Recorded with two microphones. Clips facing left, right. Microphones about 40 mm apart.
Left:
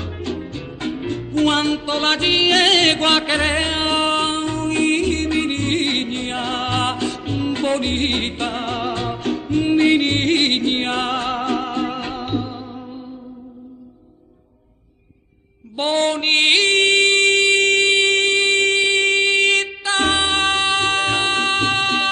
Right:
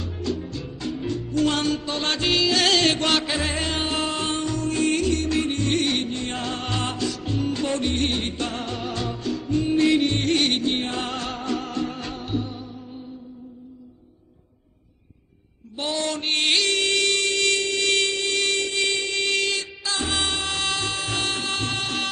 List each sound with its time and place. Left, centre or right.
0.0 s music: left
15.8 s music: left